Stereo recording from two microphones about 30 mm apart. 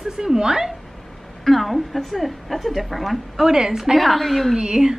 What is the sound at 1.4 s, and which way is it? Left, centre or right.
A woman's voice, centre.